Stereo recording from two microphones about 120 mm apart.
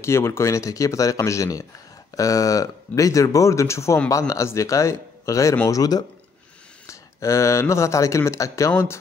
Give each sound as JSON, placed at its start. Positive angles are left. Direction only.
{"t": 0.0, "sound": "speech", "side_deg": 20}